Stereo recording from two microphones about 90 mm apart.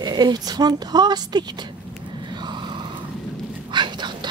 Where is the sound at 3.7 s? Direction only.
60° right (ahead or behind).